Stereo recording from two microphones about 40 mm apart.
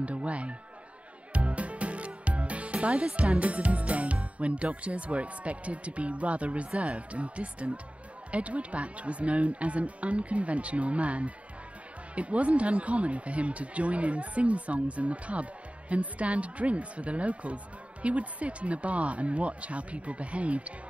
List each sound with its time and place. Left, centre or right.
0.0 s speech: right